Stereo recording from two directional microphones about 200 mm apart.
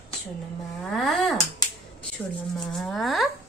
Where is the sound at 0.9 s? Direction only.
Centre (ahead or behind).